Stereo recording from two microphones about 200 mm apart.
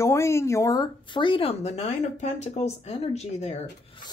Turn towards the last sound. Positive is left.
turn(degrees=30)  # may be behind; listen again after turning